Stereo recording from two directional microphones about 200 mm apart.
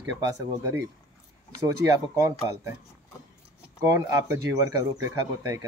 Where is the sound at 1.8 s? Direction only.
15° right (ahead or behind).